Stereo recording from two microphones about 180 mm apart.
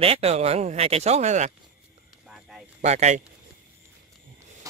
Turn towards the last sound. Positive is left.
turn(degrees=-40)  # may be behind; listen again after turning